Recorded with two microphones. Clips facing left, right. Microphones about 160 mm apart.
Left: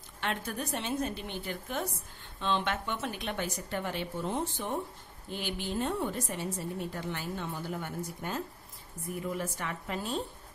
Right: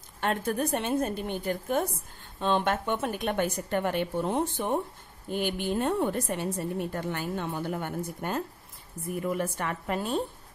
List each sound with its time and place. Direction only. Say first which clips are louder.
0.2 s a woman's voice: right 7 dB; 50° right (ahead or behind)
9.4 s a woman's voice: right 5 dB; 55° right (ahead or behind)